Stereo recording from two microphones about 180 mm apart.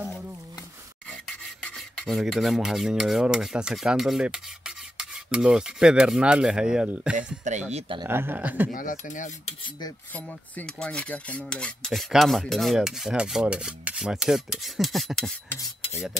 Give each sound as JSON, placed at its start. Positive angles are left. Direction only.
{"t": 0.0, "sound": "a sound", "side_deg": 0}
{"t": 1.0, "sound": "filing", "side_deg": 5}
{"t": 7.5, "sound": "a man's voice", "side_deg": -40}
{"t": 8.0, "sound": "speech", "side_deg": -15}
{"t": 8.7, "sound": "speech", "side_deg": 45}
{"t": 10.1, "sound": "filing", "side_deg": 10}